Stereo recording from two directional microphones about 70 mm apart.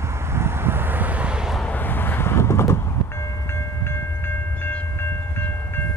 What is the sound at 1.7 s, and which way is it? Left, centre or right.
Vehicle, left.